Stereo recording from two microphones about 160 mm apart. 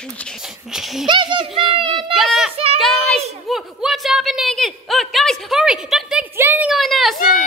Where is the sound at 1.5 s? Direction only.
35° right (ahead or behind).